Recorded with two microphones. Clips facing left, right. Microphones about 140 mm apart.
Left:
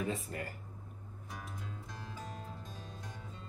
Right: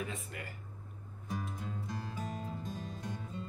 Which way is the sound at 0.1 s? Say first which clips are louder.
Left 5 dB; 40° left (ahead or behind).